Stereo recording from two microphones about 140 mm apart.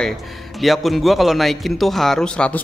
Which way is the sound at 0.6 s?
Centre (ahead or behind).